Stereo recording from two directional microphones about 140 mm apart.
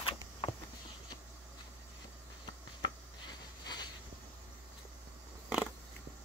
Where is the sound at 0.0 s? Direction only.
35° left (ahead or behind).